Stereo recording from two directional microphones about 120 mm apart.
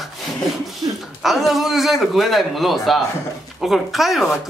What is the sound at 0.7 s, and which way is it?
Speech, centre (ahead or behind).